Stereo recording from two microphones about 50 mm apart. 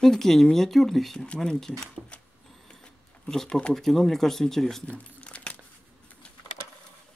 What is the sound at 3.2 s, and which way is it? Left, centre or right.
Speech, centre.